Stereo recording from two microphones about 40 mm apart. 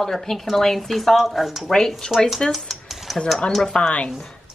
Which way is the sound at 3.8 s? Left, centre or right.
Left.